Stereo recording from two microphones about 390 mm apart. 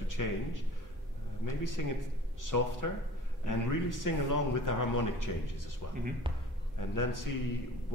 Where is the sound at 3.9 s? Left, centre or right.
Left.